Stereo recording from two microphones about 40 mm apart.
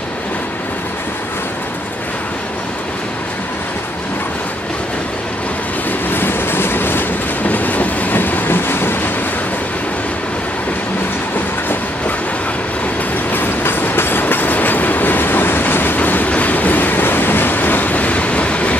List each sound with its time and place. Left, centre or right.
6.0 s train: left
7.4 s train: left
8.2 s train: left
13.3 s train: left
14.2 s train: left
16.0 s train: left